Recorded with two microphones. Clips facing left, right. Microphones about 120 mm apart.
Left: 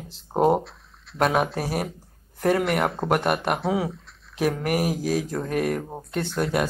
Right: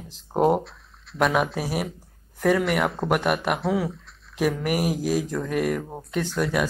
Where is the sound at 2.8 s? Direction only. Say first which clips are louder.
Left 1 dB; centre (ahead or behind).